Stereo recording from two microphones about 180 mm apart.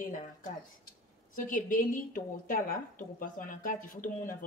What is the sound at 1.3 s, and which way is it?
A woman's voice, 50° left (ahead or behind).